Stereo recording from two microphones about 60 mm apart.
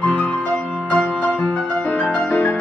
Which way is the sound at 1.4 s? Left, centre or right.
Left.